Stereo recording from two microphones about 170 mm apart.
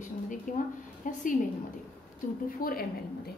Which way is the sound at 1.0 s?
50° left (ahead or behind).